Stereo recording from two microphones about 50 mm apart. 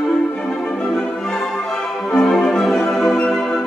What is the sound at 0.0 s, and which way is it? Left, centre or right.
Music, centre.